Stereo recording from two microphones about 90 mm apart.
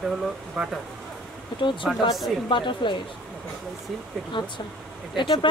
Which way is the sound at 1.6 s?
65° left (ahead or behind).